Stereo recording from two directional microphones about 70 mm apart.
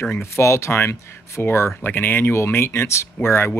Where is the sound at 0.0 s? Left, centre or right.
Left.